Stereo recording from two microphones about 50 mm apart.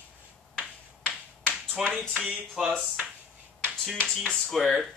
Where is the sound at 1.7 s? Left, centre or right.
Centre.